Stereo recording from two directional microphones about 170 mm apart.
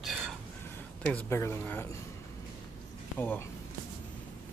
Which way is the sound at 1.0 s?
15° left (ahead or behind).